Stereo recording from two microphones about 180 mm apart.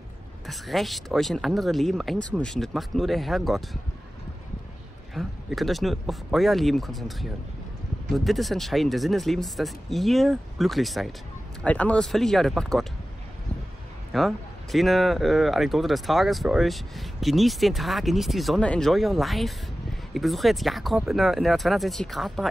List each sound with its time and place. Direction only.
0.5 s speech: centre (ahead or behind)
5.1 s speech: centre (ahead or behind)
14.1 s speech: centre (ahead or behind)